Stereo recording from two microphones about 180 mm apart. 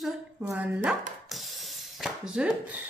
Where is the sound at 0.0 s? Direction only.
5° right (ahead or behind).